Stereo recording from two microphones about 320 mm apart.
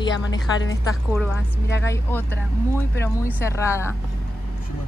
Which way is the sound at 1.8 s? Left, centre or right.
Centre.